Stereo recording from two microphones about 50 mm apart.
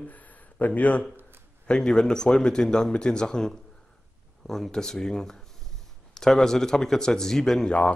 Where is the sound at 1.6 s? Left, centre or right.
Centre.